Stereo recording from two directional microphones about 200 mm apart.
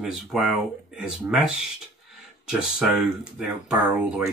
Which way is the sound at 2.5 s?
5° right (ahead or behind).